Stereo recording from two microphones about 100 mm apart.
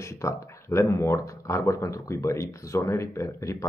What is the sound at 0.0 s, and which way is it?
Speech, 30° left (ahead or behind).